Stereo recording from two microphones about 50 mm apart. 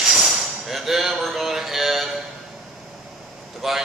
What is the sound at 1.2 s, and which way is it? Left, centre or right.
Music, centre.